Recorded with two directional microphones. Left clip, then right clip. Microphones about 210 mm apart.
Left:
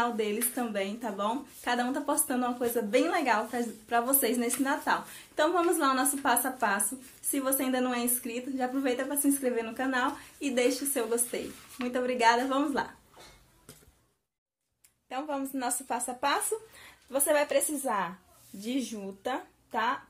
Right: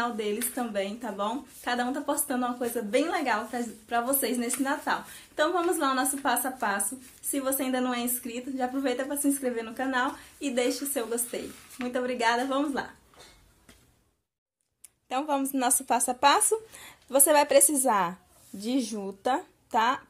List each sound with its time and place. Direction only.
0.0 s a woman's voice: 5° right (ahead or behind)
15.0 s a woman's voice: 40° right (ahead or behind)
18.6 s speech: 35° right (ahead or behind)